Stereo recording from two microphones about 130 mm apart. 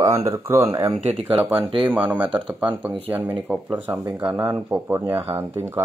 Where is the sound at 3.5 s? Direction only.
10° right (ahead or behind).